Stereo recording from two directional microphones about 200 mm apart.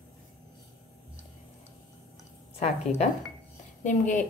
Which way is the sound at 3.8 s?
40° left (ahead or behind).